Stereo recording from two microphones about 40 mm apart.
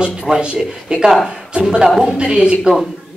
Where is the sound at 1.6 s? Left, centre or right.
Centre.